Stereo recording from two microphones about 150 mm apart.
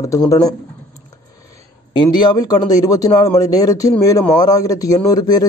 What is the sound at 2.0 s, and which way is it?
Speech, 30° left (ahead or behind).